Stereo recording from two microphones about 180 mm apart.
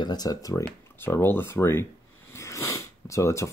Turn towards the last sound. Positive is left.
turn(degrees=15)  # may be behind; listen again after turning